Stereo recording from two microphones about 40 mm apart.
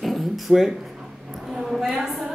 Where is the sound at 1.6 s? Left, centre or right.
Centre.